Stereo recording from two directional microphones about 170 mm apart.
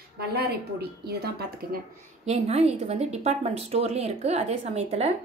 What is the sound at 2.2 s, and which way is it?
A woman's voice, 40° right (ahead or behind).